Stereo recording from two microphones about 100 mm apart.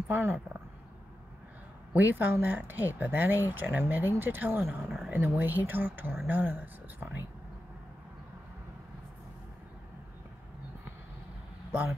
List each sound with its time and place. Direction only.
0.1 s speech: 20° right (ahead or behind)
2.0 s speech: 20° right (ahead or behind)
4.8 s a sound: 5° right (ahead or behind)
5.1 s speech: 20° right (ahead or behind)